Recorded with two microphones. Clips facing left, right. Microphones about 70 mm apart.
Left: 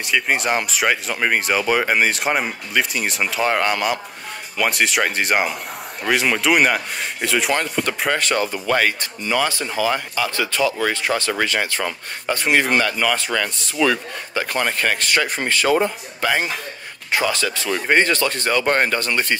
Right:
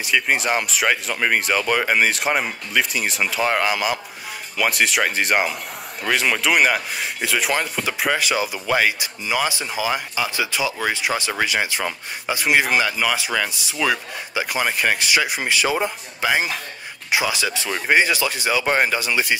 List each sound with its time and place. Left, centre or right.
0.0 s speech: centre